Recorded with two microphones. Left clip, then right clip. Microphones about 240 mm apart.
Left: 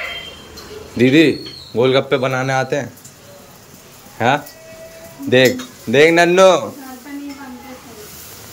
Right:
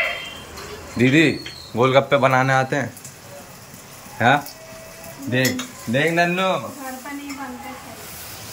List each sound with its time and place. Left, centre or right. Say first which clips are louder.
0.9 s a man's voice: left 4 dB; centre
4.2 s a man's voice: left 1 dB; centre
5.3 s speech: left 9 dB; centre